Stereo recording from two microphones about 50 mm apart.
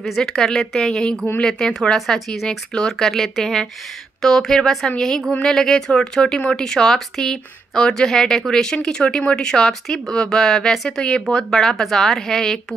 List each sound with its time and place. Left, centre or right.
0.2 s speech: centre
9.5 s speech: centre